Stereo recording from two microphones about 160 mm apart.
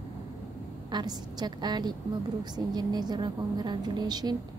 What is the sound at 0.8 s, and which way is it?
A woman's voice, 25° right (ahead or behind).